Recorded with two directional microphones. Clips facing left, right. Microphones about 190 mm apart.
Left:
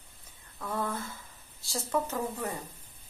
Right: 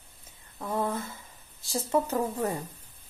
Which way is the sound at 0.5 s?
25° right (ahead or behind).